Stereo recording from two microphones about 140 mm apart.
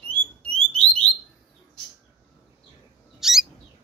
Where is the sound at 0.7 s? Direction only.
10° left (ahead or behind).